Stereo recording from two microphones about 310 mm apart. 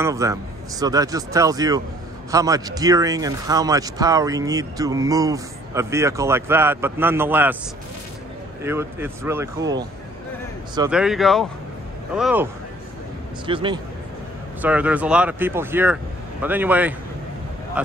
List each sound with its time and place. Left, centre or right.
0.0 s speech: centre
8.6 s speech: centre
10.9 s speech: centre
13.5 s speech: centre
14.6 s speech: centre